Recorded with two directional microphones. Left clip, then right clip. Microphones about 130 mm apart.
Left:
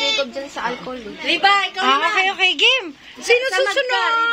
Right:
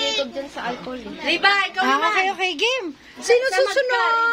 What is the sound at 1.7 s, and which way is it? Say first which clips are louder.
A woman's voice: left 2 dB; 20° right (ahead or behind).